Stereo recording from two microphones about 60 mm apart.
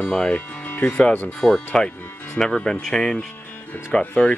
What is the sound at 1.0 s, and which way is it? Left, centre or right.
Speech, left.